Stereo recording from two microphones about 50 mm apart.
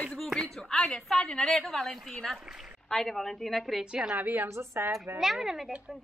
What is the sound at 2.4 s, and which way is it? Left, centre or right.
Speech, centre.